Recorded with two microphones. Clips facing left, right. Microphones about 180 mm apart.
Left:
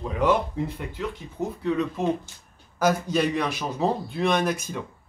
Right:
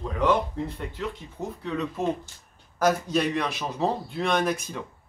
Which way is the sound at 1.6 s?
Centre (ahead or behind).